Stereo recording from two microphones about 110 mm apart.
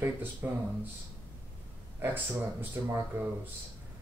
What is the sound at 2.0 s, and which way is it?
Speech, 20° right (ahead or behind).